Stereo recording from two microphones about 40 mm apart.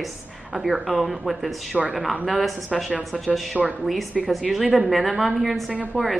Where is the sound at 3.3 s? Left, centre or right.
Right.